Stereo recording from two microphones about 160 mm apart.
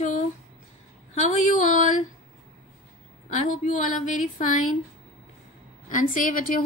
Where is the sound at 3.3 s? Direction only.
50° left (ahead or behind).